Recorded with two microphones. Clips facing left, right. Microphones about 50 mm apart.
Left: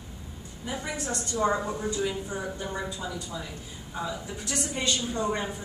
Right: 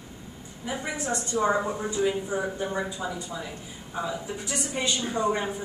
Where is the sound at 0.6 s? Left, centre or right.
Centre.